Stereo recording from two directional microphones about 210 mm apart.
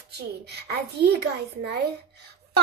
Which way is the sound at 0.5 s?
50° right (ahead or behind).